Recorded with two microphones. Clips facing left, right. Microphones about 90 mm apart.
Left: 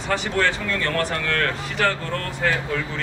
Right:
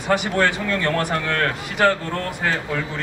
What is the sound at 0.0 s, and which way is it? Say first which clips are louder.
A man's voice: right 3 dB; 15° right (ahead or behind).